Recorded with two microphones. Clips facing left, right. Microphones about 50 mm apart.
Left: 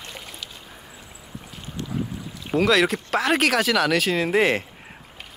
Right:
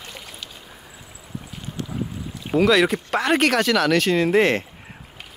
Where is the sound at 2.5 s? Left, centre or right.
Centre.